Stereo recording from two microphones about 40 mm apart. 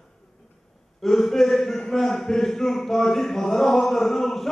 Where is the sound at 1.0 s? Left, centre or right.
Centre.